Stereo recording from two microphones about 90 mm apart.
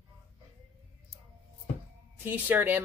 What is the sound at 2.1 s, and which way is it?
Speech, 20° right (ahead or behind).